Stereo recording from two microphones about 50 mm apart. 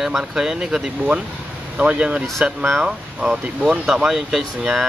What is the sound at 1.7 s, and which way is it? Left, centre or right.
Speech, right.